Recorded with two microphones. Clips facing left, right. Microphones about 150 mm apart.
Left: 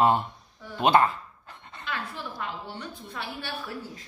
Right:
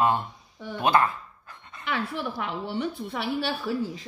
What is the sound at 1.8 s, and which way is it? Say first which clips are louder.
A woman's voice: right 6 dB; 65° right (ahead or behind).